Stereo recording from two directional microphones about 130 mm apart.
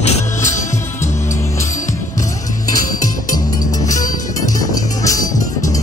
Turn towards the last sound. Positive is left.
turn(degrees=25)  # may be behind; listen again after turning